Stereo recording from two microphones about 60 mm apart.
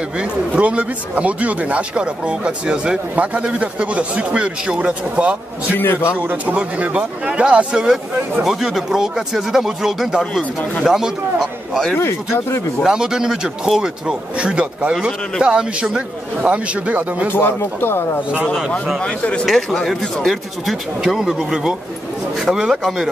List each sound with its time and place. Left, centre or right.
0.2 s speech: right
5.8 s speech: left
6.1 s a man's voice: right; by 11.8 s centre
12.4 s speech: left
12.8 s a man's voice: centre
15.0 s speech: centre
15.4 s a man's voice: centre
17.3 s speech: left
18.9 s speech: centre
19.4 s speech: centre
21.0 s a man's voice: centre